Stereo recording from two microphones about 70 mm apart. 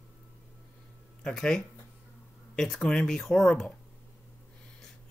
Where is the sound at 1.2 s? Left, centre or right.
Centre.